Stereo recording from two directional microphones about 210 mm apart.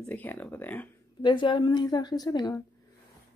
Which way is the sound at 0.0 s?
10° left (ahead or behind).